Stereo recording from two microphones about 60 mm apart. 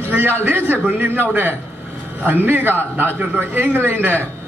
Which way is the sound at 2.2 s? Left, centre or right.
Right.